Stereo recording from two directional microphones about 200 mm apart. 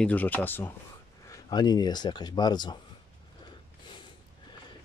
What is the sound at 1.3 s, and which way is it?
Speech, 20° left (ahead or behind).